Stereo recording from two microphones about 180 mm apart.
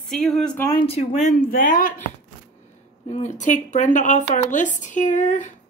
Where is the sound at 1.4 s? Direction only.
50° left (ahead or behind).